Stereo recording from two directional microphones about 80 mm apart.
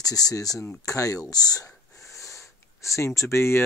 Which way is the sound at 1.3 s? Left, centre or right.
Left.